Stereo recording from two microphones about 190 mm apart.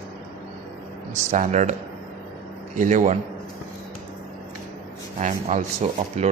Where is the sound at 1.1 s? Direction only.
40° right (ahead or behind).